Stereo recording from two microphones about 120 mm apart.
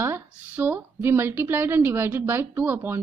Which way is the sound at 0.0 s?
15° right (ahead or behind).